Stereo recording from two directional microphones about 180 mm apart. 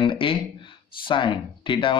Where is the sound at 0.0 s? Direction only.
30° left (ahead or behind).